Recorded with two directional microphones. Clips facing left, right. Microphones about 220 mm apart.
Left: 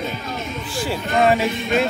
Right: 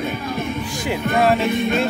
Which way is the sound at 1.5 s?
55° right (ahead or behind).